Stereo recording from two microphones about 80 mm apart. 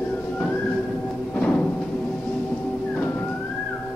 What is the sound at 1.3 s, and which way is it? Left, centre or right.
Music, centre.